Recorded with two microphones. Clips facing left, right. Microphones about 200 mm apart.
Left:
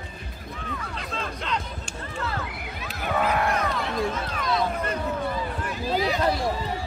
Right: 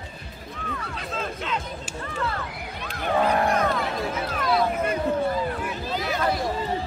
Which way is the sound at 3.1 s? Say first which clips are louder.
Right 3 dB; 35° right (ahead or behind).